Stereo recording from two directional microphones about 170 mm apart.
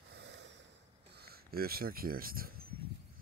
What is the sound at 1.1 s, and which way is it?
Speech, 65° right (ahead or behind).